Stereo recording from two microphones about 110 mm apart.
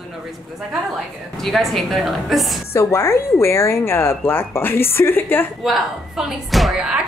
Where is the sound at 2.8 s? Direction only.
25° left (ahead or behind).